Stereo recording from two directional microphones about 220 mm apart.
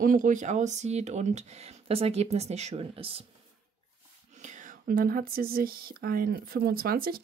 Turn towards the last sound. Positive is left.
turn(degrees=-40)  # may be behind; listen again after turning